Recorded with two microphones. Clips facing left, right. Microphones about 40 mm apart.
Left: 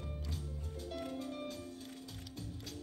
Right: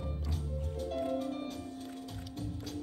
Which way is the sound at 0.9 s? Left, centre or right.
Right.